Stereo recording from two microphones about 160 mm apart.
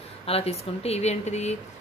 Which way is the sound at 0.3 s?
40° left (ahead or behind).